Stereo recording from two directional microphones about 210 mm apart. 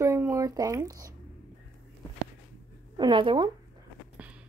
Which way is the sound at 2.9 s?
20° right (ahead or behind).